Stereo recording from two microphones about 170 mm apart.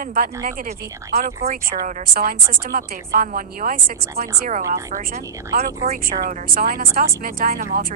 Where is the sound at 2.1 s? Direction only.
55° right (ahead or behind).